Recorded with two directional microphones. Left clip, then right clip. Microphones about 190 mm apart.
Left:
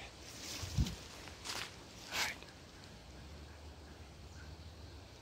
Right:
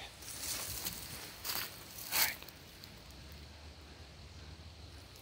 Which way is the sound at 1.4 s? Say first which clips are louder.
Right 2 dB; 70° right (ahead or behind).